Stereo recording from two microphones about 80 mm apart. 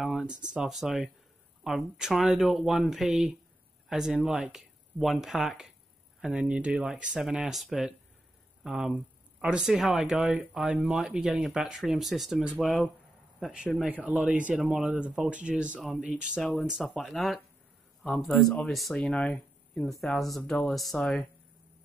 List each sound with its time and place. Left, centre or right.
0.0 s speech: centre
6.2 s speech: centre
18.9 s speech: centre
19.3 s speech: centre